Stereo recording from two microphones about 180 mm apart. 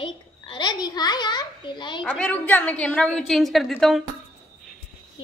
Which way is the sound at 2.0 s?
5° left (ahead or behind).